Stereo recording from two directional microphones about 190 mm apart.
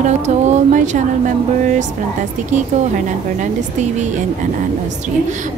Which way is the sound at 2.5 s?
40° right (ahead or behind).